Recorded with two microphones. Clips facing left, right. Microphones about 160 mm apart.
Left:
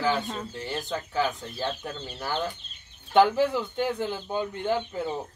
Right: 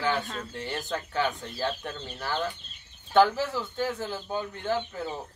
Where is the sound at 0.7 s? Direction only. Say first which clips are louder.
Left 1 dB; centre (ahead or behind).